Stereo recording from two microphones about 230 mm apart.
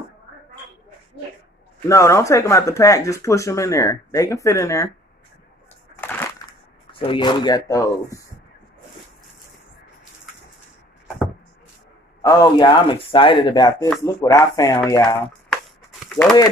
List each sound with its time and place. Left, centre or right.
1.9 s speech: centre
5.9 s crushing: centre
6.9 s speech: left
12.2 s speech: centre
15.5 s a sound: centre